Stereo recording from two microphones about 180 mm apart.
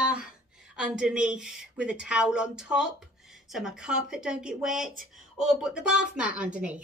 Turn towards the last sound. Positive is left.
turn(degrees=-5)  # may be behind; listen again after turning